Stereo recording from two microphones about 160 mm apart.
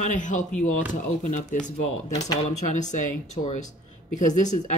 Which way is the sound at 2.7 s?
50° left (ahead or behind).